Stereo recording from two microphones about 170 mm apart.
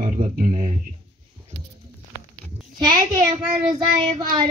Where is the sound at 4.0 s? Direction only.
25° right (ahead or behind).